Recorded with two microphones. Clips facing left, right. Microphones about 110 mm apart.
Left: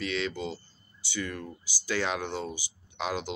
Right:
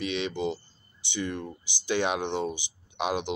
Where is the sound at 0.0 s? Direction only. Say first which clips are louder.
Right 3 dB; 20° right (ahead or behind).